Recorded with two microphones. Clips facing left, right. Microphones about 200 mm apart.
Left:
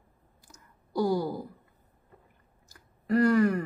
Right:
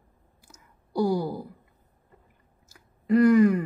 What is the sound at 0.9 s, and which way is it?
Speech, 15° right (ahead or behind).